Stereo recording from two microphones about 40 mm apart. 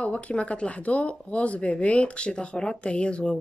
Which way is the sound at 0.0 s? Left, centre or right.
Left.